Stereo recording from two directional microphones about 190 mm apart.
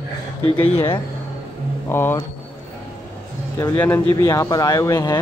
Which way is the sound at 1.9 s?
10° left (ahead or behind).